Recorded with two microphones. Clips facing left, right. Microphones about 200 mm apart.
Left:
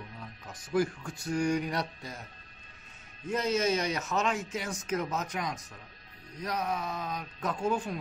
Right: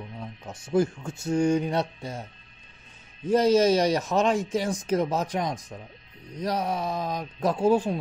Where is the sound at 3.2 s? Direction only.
35° right (ahead or behind).